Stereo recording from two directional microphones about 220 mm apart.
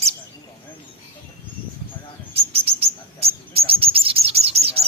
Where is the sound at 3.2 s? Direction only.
25° right (ahead or behind).